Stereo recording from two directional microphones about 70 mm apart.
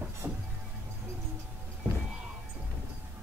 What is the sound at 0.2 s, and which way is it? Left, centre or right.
Music, right.